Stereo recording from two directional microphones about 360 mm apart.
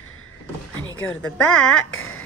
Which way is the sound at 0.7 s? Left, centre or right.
Left.